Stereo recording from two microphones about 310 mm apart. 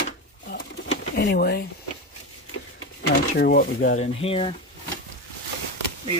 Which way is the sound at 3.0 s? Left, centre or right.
Left.